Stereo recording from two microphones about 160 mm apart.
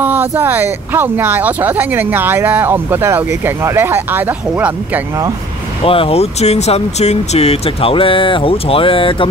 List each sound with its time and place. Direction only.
0.0 s speech: 10° right (ahead or behind)
5.9 s speech: 35° left (ahead or behind)